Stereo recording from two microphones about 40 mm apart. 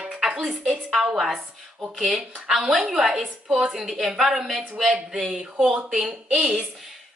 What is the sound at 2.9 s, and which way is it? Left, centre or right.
A woman's voice, centre.